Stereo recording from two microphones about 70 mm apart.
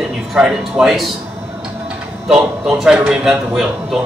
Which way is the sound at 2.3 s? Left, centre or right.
Centre.